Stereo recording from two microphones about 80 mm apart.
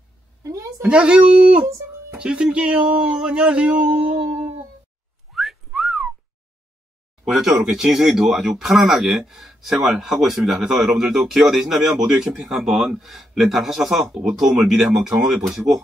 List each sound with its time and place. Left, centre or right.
0.4 s a sound: right
0.8 s speech: centre
5.3 s whistling: centre
7.2 s speech: centre